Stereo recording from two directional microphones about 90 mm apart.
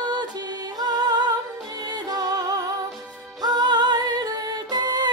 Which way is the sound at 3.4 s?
50° right (ahead or behind).